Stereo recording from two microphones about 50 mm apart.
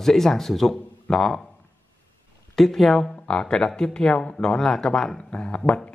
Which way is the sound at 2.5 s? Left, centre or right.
Centre.